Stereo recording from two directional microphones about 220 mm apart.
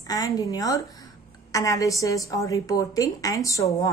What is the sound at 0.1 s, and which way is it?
A woman's voice, 15° left (ahead or behind).